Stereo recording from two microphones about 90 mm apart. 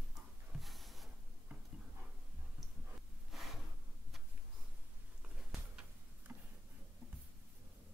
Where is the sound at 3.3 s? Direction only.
Centre (ahead or behind).